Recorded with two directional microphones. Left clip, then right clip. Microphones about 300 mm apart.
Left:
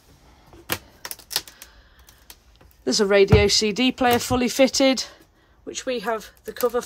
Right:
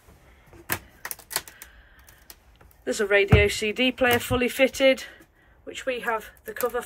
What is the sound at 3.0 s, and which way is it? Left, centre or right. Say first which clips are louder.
Speech: left 3 dB; centre.